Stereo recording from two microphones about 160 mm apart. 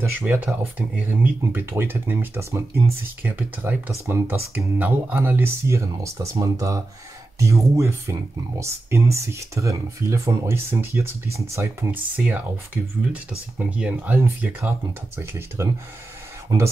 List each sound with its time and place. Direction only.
0.3 s speech: 10° right (ahead or behind)